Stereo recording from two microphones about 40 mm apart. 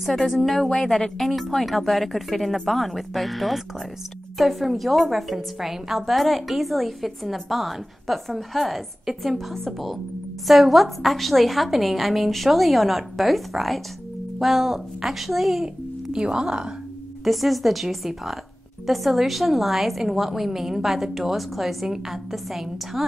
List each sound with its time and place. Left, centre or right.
0.3 s a woman's voice: centre
15.6 s speech: centre
17.2 s a woman's voice: centre